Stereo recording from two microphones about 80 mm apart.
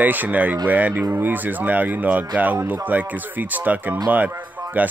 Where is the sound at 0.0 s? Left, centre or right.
Right.